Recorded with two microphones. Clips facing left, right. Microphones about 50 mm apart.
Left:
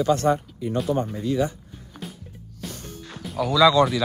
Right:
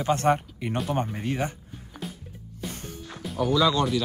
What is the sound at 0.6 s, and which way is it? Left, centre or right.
Speech, right.